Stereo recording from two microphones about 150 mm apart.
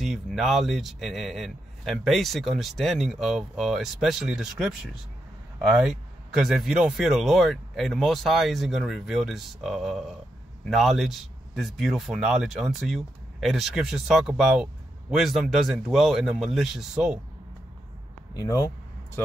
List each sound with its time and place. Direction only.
0.0 s speech: centre (ahead or behind)
18.3 s speech: 25° left (ahead or behind)